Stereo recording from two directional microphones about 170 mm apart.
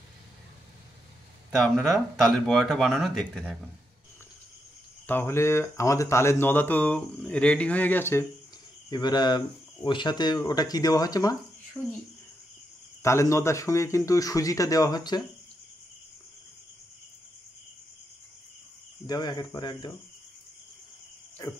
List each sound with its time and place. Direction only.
1.6 s speech: centre (ahead or behind)
5.0 s speech: 15° left (ahead or behind)
8.9 s speech: 25° left (ahead or behind)
13.0 s speech: 15° left (ahead or behind)
19.0 s speech: 25° left (ahead or behind)